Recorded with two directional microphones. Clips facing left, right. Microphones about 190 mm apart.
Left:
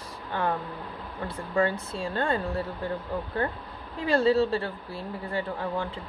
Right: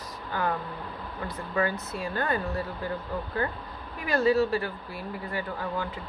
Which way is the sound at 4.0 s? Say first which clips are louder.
Left 1 dB; 30° left (ahead or behind).